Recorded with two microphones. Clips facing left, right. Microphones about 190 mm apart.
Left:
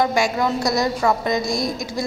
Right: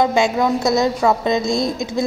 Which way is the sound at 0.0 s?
20° right (ahead or behind).